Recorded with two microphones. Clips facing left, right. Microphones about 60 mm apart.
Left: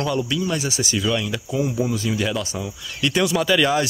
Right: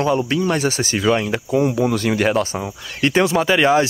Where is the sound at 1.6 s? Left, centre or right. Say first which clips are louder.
Right 5 dB; right.